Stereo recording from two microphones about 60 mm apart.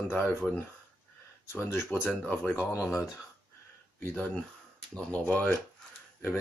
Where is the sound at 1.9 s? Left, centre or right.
Left.